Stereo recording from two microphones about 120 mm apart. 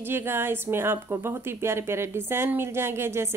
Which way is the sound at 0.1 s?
20° right (ahead or behind).